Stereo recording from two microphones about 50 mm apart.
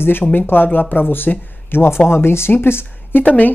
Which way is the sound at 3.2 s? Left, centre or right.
Left.